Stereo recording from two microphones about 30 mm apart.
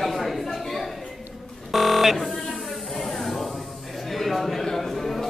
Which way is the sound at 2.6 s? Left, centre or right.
Centre.